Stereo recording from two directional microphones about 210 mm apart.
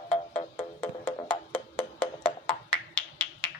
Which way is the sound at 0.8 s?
5° left (ahead or behind).